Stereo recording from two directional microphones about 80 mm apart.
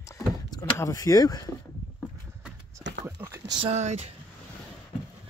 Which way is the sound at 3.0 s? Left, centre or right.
Right.